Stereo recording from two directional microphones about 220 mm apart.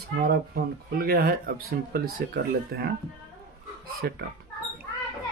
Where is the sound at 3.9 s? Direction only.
45° right (ahead or behind).